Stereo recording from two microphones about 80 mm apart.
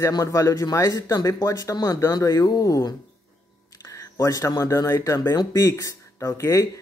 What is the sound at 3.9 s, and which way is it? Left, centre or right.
Speech, left.